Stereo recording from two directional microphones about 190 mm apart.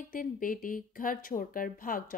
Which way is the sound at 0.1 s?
45° left (ahead or behind).